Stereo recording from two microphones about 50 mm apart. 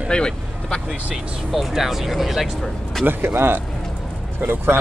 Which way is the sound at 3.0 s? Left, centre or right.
Right.